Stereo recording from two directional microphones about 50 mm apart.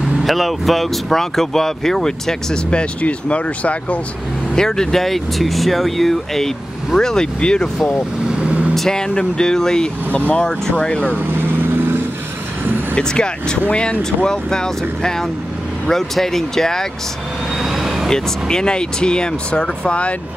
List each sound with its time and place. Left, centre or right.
0.2 s speech: centre; by 4.0 s left
4.6 s speech: centre
8.3 s vehicle: right
8.7 s speech: centre
10.1 s speech: left
11.2 s vehicle: right
12.9 s speech: centre
17.6 s vehicle: centre
18.1 s speech: centre